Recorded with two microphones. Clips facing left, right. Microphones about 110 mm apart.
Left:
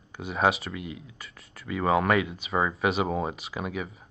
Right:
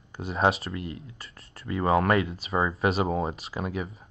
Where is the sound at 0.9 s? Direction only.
45° right (ahead or behind).